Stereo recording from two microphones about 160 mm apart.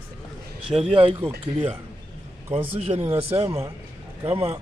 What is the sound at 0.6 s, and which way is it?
Speech, 35° right (ahead or behind).